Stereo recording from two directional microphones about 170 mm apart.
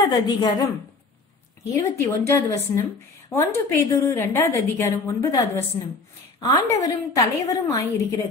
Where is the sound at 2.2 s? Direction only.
15° left (ahead or behind).